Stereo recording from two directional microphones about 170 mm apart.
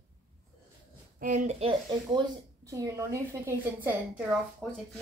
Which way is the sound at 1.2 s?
45° right (ahead or behind).